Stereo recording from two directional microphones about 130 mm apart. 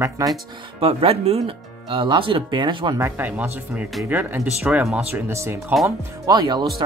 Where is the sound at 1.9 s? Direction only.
40° right (ahead or behind).